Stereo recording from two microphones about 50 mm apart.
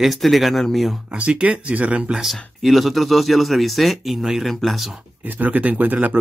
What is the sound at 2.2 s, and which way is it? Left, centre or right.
Speech, centre.